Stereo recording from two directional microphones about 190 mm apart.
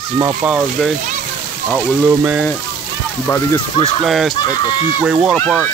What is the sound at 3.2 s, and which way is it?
Speech, 15° left (ahead or behind).